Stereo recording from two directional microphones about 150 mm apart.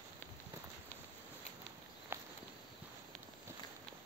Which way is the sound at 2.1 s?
15° right (ahead or behind).